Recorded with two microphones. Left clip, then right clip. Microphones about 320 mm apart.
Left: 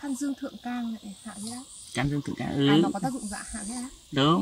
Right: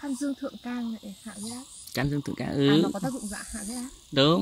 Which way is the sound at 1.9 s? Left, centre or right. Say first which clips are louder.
Even; centre.